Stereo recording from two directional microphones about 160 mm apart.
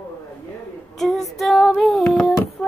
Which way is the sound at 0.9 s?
Centre (ahead or behind).